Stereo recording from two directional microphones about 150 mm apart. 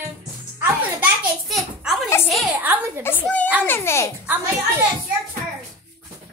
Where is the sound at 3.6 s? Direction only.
15° left (ahead or behind).